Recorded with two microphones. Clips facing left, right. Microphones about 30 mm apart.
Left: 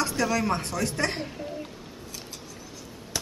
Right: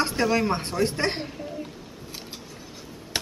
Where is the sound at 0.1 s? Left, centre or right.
Right.